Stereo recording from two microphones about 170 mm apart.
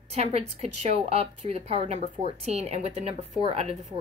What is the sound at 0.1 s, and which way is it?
A woman's voice, 40° right (ahead or behind).